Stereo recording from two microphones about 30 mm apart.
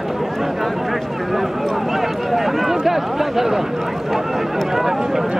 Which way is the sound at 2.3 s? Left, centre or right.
Centre.